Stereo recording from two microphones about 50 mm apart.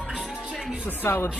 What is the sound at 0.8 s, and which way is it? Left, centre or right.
Speech, left.